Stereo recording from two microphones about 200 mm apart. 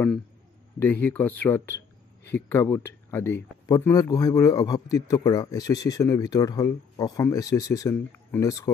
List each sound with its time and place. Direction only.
0.7 s speech: 10° left (ahead or behind)